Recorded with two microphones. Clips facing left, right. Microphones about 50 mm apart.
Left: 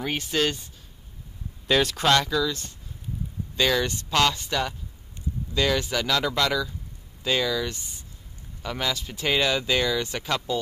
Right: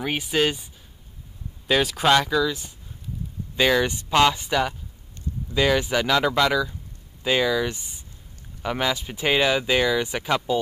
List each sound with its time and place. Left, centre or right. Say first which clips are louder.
0.0 s speech: right 3 dB; centre
1.7 s speech: right 2 dB; centre